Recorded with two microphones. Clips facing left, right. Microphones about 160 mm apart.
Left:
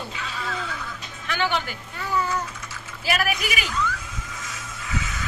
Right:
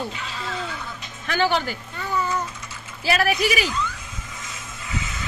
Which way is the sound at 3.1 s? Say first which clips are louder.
Right 5 dB; 30° right (ahead or behind).